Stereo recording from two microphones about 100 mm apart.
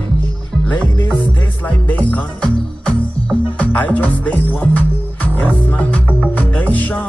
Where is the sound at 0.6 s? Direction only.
15° left (ahead or behind).